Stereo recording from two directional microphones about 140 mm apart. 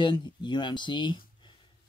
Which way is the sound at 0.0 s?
30° left (ahead or behind).